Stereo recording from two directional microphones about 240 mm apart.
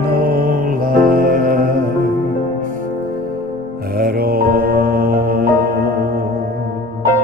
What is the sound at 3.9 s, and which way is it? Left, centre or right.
Music, right.